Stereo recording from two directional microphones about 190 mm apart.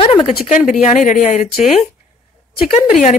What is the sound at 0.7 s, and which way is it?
Speech, 40° left (ahead or behind).